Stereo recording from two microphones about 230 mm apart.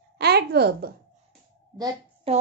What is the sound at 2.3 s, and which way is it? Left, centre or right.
Child singing, right.